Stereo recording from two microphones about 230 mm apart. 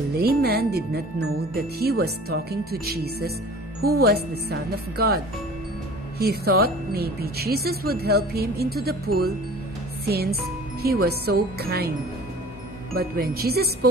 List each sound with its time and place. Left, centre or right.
0.2 s a woman's voice: right
12.9 s music: right